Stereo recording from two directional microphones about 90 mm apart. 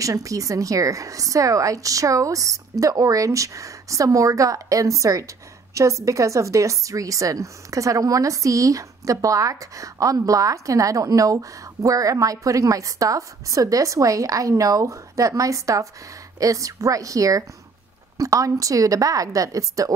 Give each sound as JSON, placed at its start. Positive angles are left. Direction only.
{"t": 0.0, "sound": "a woman's voice", "side_deg": -40}